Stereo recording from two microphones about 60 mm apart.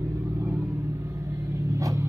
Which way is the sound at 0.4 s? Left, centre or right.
Right.